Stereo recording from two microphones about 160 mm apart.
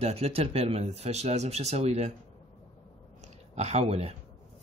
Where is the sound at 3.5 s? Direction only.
40° right (ahead or behind).